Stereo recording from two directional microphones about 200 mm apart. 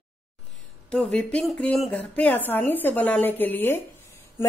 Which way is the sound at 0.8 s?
5° left (ahead or behind).